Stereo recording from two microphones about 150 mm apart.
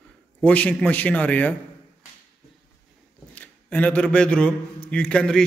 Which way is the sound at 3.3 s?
10° left (ahead or behind).